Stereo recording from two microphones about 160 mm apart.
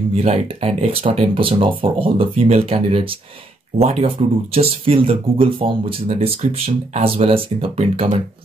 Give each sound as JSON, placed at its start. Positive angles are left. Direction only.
{"t": 0.1, "sound": "speech", "side_deg": -40}